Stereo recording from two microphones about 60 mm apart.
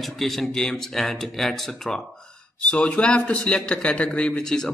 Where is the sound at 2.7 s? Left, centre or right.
Centre.